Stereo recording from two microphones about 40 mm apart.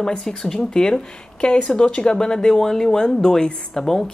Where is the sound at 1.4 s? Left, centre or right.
Left.